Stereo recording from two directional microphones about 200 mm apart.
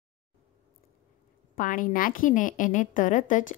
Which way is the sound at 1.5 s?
40° left (ahead or behind).